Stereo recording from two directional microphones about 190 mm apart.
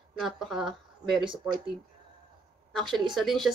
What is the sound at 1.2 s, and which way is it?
Speech, 25° right (ahead or behind).